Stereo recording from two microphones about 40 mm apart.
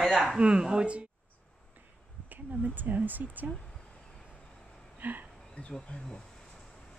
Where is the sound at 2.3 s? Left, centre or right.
Right.